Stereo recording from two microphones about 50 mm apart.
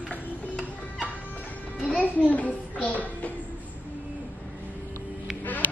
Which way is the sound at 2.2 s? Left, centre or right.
Left.